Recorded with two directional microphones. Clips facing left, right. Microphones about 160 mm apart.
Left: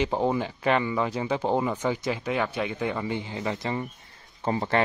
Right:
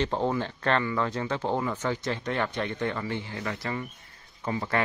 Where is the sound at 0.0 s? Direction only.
10° left (ahead or behind).